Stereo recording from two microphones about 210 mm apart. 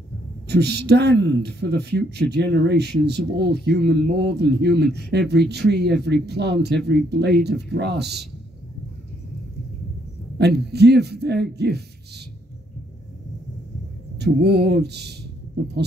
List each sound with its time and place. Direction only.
0.5 s speech: 50° right (ahead or behind)
10.3 s speech: 50° right (ahead or behind)
14.2 s speech: 55° right (ahead or behind)